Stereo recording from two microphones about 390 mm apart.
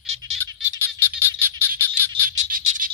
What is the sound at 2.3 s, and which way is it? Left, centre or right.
Frog, centre.